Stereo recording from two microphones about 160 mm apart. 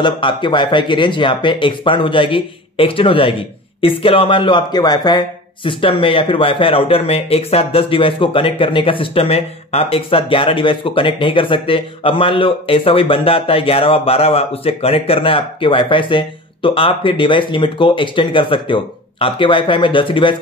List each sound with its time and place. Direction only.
0.0 s a man's voice: 30° left (ahead or behind)